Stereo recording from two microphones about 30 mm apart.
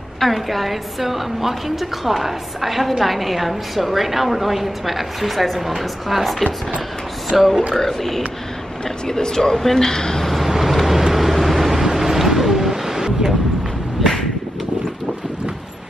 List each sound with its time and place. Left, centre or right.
0.2 s a woman's voice: centre
7.7 s a man's voice: centre
8.8 s a man's voice: centre
10.2 s vehicle: centre